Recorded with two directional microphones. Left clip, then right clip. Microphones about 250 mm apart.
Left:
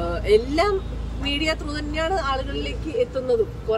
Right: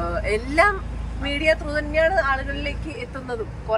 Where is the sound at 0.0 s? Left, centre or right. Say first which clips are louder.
Left 5 dB; centre.